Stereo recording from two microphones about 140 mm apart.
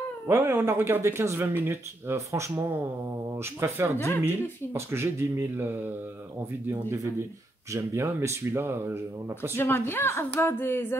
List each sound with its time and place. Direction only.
0.3 s speech: 15° right (ahead or behind)
9.6 s speech: 15° left (ahead or behind)